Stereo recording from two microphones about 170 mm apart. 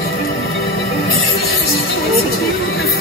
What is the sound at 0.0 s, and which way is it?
Music, 65° left (ahead or behind).